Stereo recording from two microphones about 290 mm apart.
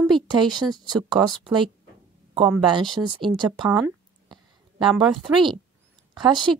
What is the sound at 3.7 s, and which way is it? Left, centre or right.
Speech, centre.